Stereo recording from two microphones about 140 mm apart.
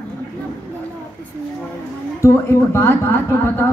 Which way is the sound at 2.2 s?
15° left (ahead or behind).